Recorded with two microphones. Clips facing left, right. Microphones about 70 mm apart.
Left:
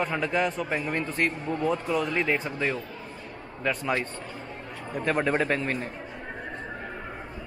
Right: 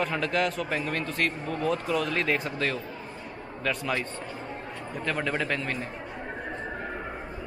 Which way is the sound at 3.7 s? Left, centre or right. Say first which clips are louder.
Left 2 dB; left.